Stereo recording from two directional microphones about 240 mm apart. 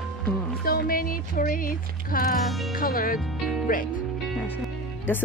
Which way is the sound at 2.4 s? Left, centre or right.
Centre.